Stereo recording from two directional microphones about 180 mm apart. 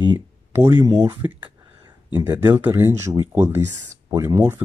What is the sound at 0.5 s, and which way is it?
Speech, 15° right (ahead or behind).